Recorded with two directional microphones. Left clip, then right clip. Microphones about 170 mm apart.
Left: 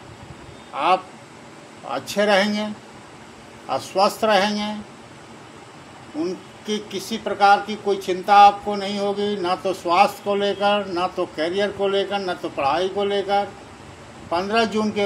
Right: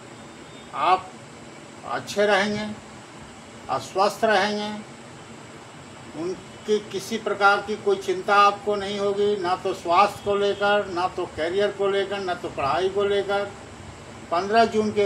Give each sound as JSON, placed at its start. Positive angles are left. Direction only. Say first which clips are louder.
{"t": 1.9, "sound": "speech", "louder": "left 2 dB", "side_deg": 65}
{"t": 3.7, "sound": "speech", "louder": "left 3 dB", "side_deg": 70}
{"t": 6.7, "sound": "speech", "louder": "right 2 dB", "side_deg": 75}